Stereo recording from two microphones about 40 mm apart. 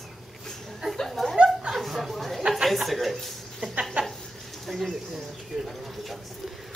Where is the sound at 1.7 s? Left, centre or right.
Centre.